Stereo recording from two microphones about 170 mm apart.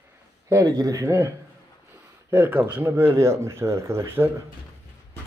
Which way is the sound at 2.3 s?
15° right (ahead or behind).